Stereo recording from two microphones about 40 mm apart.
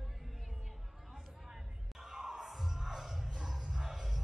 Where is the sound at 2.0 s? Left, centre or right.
Centre.